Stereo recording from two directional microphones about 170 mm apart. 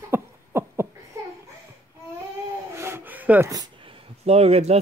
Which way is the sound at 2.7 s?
15° right (ahead or behind).